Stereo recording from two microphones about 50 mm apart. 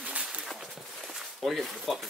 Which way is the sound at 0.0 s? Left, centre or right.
Right.